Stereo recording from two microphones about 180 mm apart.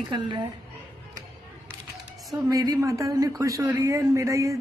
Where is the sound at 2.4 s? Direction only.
20° right (ahead or behind).